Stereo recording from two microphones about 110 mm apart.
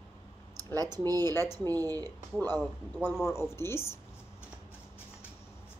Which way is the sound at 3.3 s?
25° left (ahead or behind).